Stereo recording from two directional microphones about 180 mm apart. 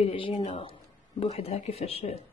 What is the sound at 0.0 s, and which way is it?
Speech, 30° left (ahead or behind).